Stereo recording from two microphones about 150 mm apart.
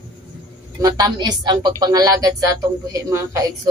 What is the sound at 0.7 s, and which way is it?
Speech, 25° right (ahead or behind).